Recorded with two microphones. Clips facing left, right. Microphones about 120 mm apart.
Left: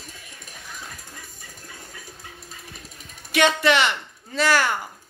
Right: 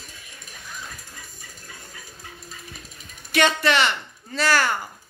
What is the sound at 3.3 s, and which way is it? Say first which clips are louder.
Speech: left 1 dB; 15° left (ahead or behind).